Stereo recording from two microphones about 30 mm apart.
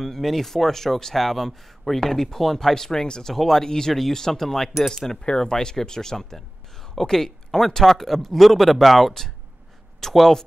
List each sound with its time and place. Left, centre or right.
0.0 s speech: centre
2.7 s speech: centre